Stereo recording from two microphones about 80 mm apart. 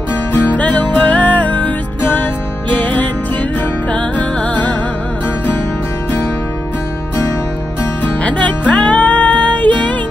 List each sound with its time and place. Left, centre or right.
0.3 s music: left
8.0 s music: centre